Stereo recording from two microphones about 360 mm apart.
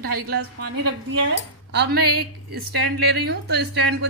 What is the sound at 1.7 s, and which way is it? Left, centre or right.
A woman's voice, right.